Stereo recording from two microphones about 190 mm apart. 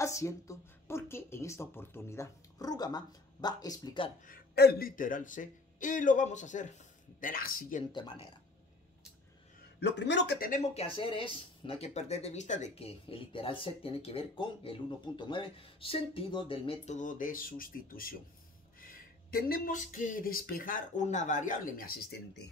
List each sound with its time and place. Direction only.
0.0 s speech: 15° left (ahead or behind)
4.3 s speech: 55° left (ahead or behind)
7.9 s speech: 25° left (ahead or behind)
9.8 s speech: 65° left (ahead or behind)
10.7 s speech: 30° left (ahead or behind); by 22.4 s 50° left (ahead or behind)